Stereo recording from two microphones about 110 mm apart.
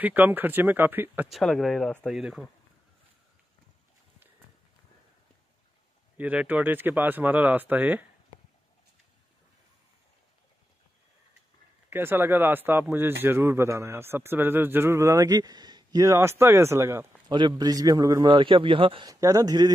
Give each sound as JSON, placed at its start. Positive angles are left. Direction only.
{"t": 0.0, "sound": "speech", "side_deg": -15}
{"t": 1.3, "sound": "speech", "side_deg": 5}
{"t": 6.1, "sound": "speech", "side_deg": -15}
{"t": 11.9, "sound": "a man's voice", "side_deg": -20}
{"t": 17.3, "sound": "a man's voice", "side_deg": -45}
{"t": 18.3, "sound": "a man's voice", "side_deg": -50}
{"t": 19.0, "sound": "a man's voice", "side_deg": -30}